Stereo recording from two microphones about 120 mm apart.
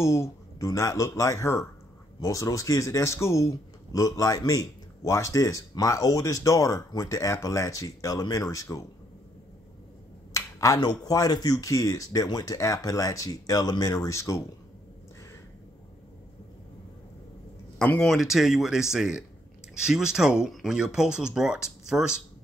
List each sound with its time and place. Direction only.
0.0 s speech: 25° left (ahead or behind)
10.3 s speech: 30° left (ahead or behind)
17.7 s speech: 10° left (ahead or behind)
18.1 s speech: centre (ahead or behind)